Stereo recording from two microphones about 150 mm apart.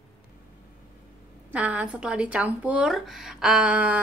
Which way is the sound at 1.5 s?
10° right (ahead or behind).